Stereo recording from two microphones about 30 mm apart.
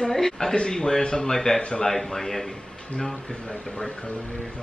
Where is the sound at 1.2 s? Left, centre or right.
Centre.